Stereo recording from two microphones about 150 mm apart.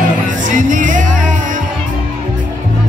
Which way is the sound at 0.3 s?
60° right (ahead or behind).